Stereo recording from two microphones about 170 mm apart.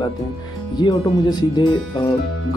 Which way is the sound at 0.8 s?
25° left (ahead or behind).